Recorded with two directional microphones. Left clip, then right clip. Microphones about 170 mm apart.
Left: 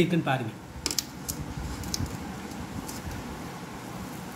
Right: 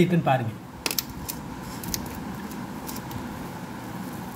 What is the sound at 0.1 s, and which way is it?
Speech, 35° right (ahead or behind).